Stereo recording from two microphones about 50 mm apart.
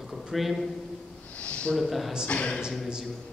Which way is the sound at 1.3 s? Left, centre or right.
Left.